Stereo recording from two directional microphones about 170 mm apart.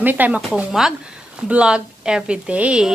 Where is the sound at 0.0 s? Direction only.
10° right (ahead or behind).